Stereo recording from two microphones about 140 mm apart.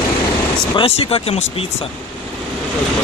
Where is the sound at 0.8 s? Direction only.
45° left (ahead or behind).